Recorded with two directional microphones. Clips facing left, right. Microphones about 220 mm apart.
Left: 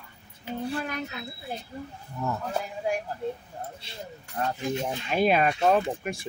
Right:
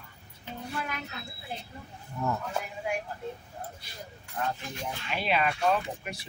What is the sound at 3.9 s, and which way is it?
Speech, 40° left (ahead or behind).